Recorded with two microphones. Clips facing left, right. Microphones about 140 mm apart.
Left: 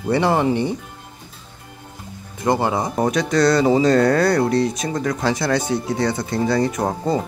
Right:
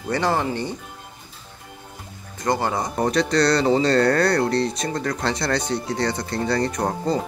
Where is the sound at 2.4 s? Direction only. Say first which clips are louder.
Left 3 dB; 10° left (ahead or behind).